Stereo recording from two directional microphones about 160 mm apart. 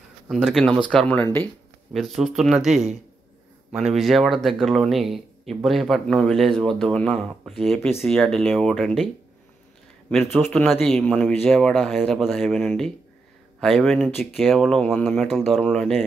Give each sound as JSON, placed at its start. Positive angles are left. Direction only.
{"t": 0.3, "sound": "speech", "side_deg": 0}
{"t": 0.8, "sound": "speech", "side_deg": 10}
{"t": 2.0, "sound": "speech", "side_deg": 0}
{"t": 2.7, "sound": "speech", "side_deg": -45}
{"t": 3.9, "sound": "speech", "side_deg": 0}
{"t": 10.3, "sound": "speech", "side_deg": 5}